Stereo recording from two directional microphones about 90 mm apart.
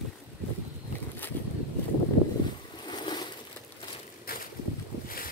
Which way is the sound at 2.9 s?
55° left (ahead or behind).